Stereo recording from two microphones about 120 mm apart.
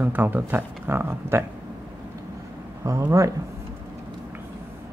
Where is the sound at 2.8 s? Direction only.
25° right (ahead or behind).